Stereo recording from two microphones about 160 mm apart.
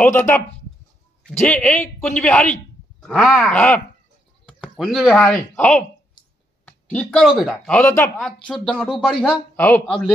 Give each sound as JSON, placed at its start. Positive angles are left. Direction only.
{"t": 0.0, "sound": "speech", "side_deg": 15}
{"t": 1.4, "sound": "speech", "side_deg": 10}
{"t": 7.7, "sound": "speech", "side_deg": 15}
{"t": 8.2, "sound": "speech", "side_deg": 5}